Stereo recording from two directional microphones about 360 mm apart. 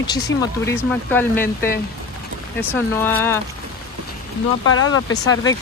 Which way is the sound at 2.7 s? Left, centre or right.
Centre.